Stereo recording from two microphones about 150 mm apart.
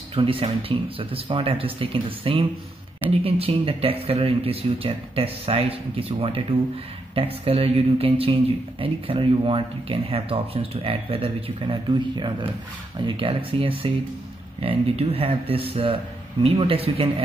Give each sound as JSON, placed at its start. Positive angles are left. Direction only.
{"t": 0.1, "sound": "speech", "side_deg": -40}